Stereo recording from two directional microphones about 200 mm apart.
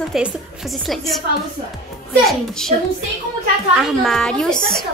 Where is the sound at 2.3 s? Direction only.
Centre (ahead or behind).